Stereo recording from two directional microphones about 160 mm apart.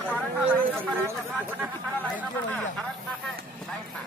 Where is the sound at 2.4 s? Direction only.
10° left (ahead or behind).